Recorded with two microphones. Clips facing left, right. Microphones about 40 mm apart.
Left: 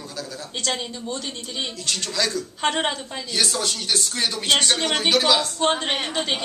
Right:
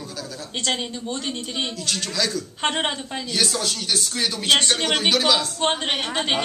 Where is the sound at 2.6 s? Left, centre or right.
Centre.